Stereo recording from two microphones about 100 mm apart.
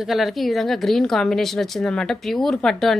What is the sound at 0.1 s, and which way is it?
A woman's voice, centre (ahead or behind).